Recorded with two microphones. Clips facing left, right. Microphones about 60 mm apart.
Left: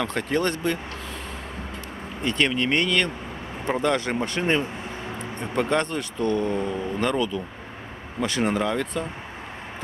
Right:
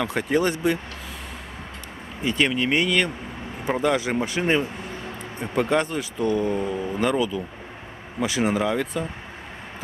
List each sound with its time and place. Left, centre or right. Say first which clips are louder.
0.0 s speech: right 2 dB; centre
2.2 s speech: right 1 dB; centre